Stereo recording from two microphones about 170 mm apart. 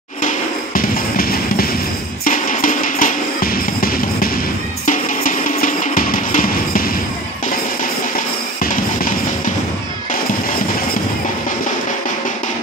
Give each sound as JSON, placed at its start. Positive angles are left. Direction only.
{"t": 0.7, "sound": "music", "side_deg": 60}